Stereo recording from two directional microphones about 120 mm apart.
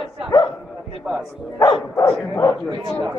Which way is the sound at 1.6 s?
30° left (ahead or behind).